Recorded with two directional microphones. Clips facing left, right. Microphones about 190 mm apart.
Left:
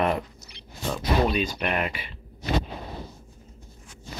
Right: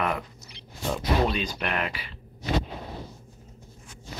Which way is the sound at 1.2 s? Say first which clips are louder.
Left 3 dB; 15° left (ahead or behind).